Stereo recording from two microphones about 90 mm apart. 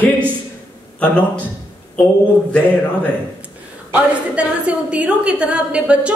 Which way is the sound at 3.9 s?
15° right (ahead or behind).